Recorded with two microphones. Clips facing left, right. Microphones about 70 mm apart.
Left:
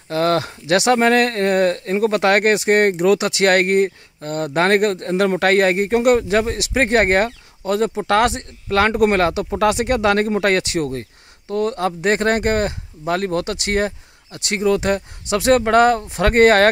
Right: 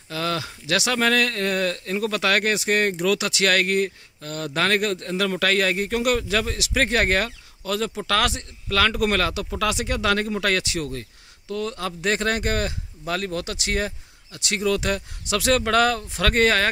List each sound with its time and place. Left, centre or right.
0.1 s speech: left